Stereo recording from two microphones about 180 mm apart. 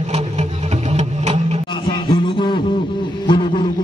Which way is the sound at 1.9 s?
25° left (ahead or behind).